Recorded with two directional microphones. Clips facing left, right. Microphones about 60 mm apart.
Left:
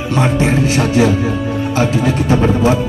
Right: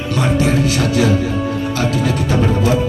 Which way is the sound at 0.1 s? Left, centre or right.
Left.